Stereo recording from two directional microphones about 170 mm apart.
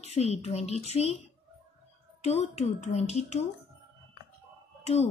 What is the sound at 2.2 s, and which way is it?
Speech, 40° left (ahead or behind).